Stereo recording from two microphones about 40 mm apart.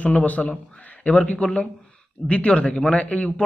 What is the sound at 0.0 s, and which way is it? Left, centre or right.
A man's voice, left.